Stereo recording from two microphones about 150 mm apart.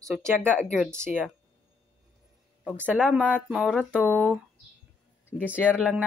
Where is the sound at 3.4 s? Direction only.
Centre (ahead or behind).